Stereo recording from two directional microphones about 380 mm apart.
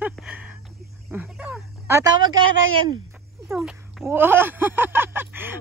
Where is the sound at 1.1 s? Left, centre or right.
Centre.